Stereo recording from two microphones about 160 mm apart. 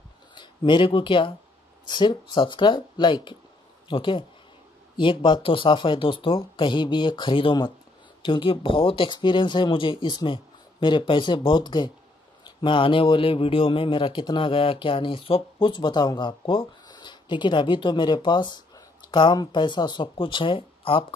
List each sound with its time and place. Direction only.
0.3 s speech: 30° left (ahead or behind)